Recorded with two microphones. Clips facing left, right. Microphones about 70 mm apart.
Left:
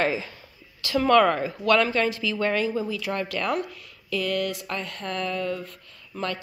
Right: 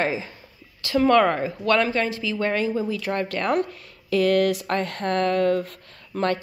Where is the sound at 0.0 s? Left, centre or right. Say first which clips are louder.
Even; right.